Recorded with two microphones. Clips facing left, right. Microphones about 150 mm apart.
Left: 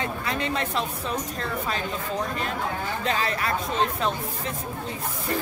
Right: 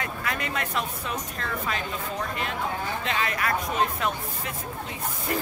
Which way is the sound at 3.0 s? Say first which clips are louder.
Left 3 dB; 35° left (ahead or behind).